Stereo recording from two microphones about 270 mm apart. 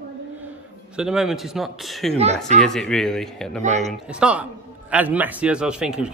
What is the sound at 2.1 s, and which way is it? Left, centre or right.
Speech, right.